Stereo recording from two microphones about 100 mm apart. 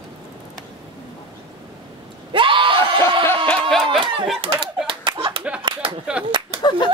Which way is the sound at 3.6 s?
Centre (ahead or behind).